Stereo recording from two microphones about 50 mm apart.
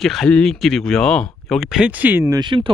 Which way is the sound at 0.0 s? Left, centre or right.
Centre.